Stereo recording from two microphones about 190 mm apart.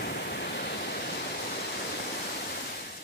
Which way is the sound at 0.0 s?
55° left (ahead or behind).